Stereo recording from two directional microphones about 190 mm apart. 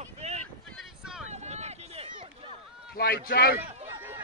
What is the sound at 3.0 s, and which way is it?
Speech, 50° left (ahead or behind).